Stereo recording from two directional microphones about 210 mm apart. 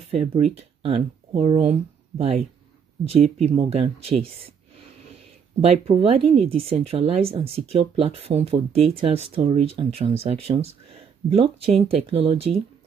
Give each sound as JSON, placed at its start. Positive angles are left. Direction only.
{"t": 0.1, "sound": "speech", "side_deg": -25}
{"t": 5.6, "sound": "speech", "side_deg": -30}